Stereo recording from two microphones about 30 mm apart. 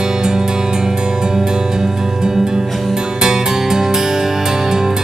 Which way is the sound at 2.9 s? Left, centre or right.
Right.